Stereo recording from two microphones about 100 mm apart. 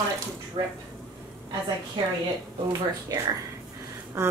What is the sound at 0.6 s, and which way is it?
Speech, 55° right (ahead or behind).